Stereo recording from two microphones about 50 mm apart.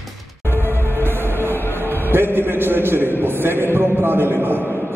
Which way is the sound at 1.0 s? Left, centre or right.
Right.